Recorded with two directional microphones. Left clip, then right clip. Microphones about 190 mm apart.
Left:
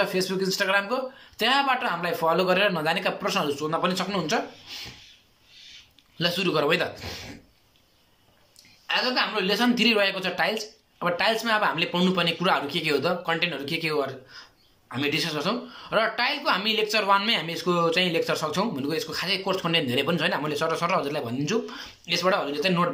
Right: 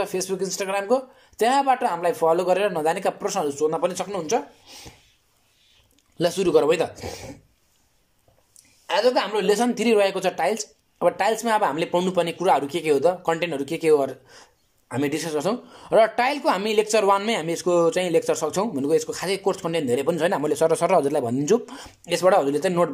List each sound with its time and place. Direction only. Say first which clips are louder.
0.0 s speech: even; 30° right (ahead or behind)
6.1 s speech: right 5 dB; 30° right (ahead or behind)
8.8 s speech: right 4 dB; 35° right (ahead or behind)